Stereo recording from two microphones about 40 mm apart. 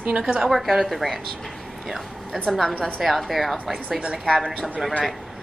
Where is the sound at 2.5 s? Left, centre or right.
Centre.